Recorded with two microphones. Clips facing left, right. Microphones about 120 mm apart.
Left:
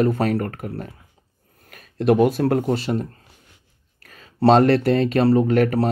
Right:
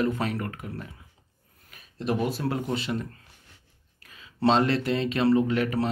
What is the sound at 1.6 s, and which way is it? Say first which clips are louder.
Speech: left 11 dB; 60° left (ahead or behind).